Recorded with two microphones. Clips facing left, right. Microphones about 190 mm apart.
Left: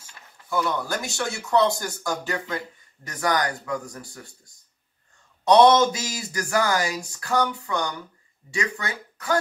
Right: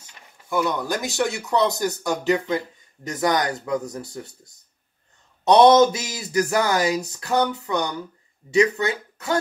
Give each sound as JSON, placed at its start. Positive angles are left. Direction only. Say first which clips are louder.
{"t": 0.5, "sound": "speech", "louder": "right 2 dB", "side_deg": -20}
{"t": 5.4, "sound": "speech", "louder": "right 2 dB", "side_deg": -25}